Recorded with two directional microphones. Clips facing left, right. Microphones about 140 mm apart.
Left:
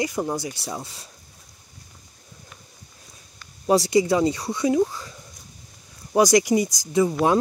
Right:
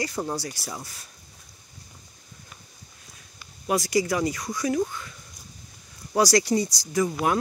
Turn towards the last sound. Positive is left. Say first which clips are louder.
# left 4 dB
turn(degrees=20)  # may be behind; listen again after turning